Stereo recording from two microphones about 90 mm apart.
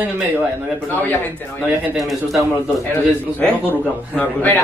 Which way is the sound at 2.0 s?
Centre (ahead or behind).